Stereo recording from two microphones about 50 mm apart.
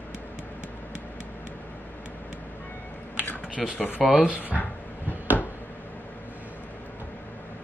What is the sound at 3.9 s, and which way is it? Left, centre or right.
Speech, centre.